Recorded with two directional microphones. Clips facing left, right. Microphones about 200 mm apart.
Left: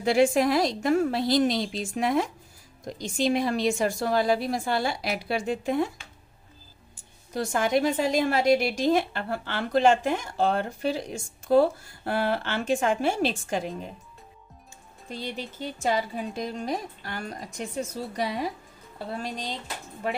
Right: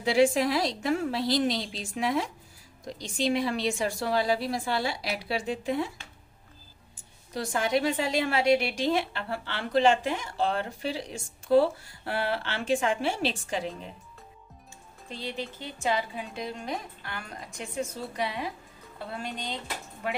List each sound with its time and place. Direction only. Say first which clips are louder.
0.0 s a woman's voice: left 2 dB; 50° left (ahead or behind)
7.3 s a woman's voice: left 3 dB; 50° left (ahead or behind)
15.0 s a woman's voice: left 1 dB; 45° left (ahead or behind)